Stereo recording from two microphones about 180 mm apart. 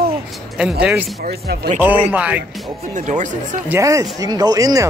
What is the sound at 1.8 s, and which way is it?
Speech, 10° right (ahead or behind).